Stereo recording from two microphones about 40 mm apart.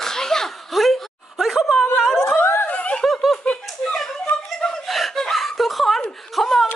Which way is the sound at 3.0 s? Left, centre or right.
Centre.